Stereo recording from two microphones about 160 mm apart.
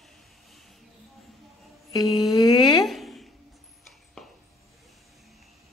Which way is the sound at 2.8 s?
Centre (ahead or behind).